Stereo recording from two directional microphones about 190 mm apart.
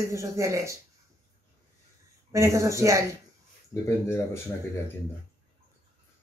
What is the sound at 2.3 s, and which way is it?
Speech, 15° right (ahead or behind).